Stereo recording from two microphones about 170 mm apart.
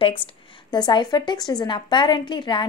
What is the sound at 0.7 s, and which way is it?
Speech, 25° left (ahead or behind).